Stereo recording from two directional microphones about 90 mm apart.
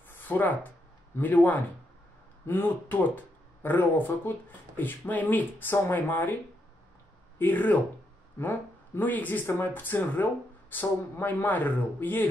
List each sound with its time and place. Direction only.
0.1 s a sound: 20° left (ahead or behind)
1.1 s speech: 20° left (ahead or behind)
7.3 s speech: 20° left (ahead or behind)